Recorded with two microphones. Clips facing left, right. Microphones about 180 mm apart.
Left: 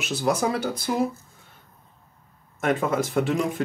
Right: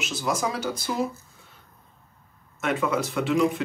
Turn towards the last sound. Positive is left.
turn(degrees=45)  # may be behind; listen again after turning